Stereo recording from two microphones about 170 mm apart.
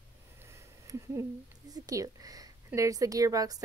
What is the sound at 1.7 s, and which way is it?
A woman's voice, 20° right (ahead or behind).